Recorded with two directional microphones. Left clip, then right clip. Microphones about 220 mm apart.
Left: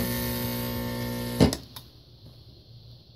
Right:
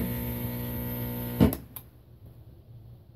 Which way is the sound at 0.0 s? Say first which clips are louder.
Left 5 dB; 45° left (ahead or behind).